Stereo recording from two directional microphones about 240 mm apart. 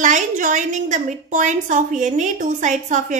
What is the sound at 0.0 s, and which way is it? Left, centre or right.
A woman's voice, right.